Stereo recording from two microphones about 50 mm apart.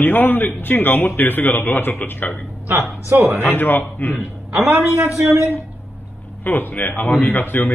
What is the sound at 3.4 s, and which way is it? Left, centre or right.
Speech, left.